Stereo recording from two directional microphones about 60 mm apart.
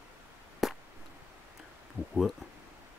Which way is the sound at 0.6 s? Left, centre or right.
Centre.